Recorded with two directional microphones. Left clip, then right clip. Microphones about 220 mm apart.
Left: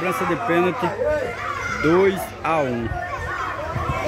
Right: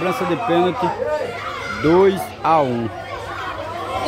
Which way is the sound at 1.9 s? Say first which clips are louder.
Right 5 dB; 15° right (ahead or behind).